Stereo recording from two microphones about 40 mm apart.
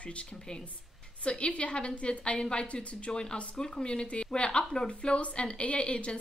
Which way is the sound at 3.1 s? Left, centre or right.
Left.